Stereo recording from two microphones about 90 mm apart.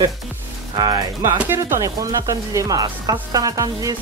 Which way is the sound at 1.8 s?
40° right (ahead or behind).